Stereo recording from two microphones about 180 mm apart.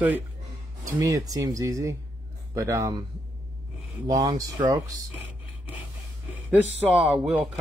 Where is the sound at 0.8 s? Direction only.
15° right (ahead or behind).